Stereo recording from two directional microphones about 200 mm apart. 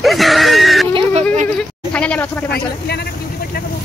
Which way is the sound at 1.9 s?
5° left (ahead or behind).